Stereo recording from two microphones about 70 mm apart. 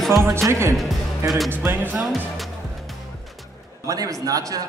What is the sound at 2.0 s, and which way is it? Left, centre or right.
Music, centre.